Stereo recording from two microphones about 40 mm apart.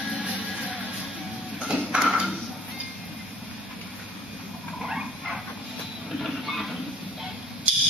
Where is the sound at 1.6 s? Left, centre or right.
Right.